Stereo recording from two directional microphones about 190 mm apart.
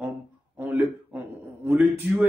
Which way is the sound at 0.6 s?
10° right (ahead or behind).